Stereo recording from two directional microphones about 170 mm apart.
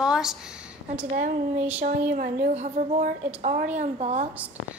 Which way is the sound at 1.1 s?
45° right (ahead or behind).